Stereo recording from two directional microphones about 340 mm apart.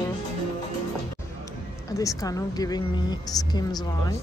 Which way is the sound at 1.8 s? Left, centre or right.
Centre.